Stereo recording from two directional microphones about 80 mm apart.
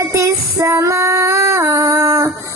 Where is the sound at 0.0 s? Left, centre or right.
Right.